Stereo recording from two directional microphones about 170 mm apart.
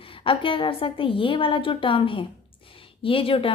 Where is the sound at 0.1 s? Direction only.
30° left (ahead or behind).